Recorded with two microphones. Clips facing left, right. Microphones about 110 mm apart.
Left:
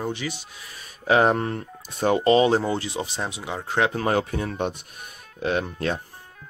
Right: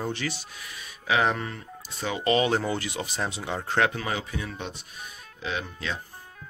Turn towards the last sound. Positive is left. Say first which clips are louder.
# left 7 dB
turn(degrees=50)  # may be behind; listen again after turning